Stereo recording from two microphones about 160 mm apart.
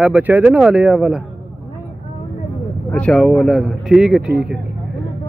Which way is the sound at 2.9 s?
5° left (ahead or behind).